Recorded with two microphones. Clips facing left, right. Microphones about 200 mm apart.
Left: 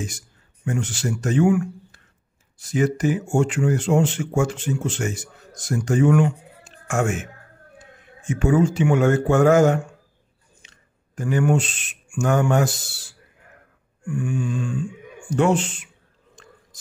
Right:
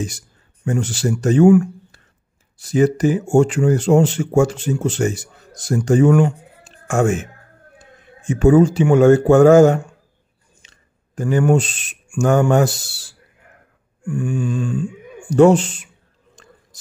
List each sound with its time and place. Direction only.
0.7 s speech: 35° right (ahead or behind)
14.2 s speech: 35° right (ahead or behind)